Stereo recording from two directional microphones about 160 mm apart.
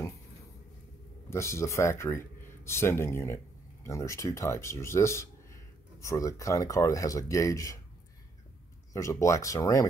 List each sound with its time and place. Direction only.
1.3 s speech: 20° left (ahead or behind)
8.9 s speech: 20° left (ahead or behind)